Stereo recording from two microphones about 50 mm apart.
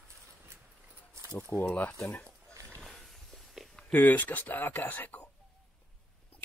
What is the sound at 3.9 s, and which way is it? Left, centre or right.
Speech, left.